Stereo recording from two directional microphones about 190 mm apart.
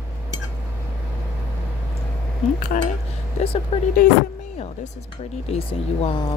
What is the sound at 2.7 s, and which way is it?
Speech, 40° left (ahead or behind).